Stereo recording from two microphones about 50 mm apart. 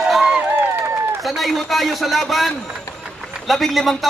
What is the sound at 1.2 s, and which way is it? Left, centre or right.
A man's voice, centre.